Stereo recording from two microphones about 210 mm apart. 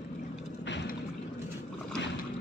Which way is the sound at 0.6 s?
55° left (ahead or behind).